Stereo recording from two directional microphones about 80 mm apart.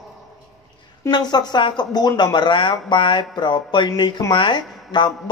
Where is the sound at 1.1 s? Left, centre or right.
Left.